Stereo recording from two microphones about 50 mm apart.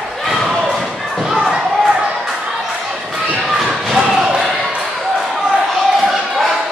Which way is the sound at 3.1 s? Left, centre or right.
Right.